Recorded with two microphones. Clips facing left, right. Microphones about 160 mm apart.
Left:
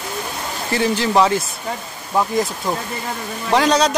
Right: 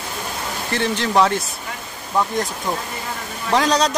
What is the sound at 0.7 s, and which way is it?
Speech, 5° left (ahead or behind).